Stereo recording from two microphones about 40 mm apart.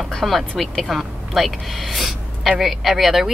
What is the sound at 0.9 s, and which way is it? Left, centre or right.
Speech, centre.